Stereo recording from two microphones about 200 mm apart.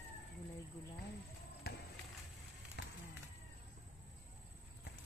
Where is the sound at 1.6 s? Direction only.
50° left (ahead or behind).